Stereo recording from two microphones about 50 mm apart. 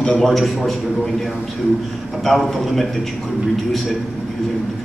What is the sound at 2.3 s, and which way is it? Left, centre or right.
Speech, centre.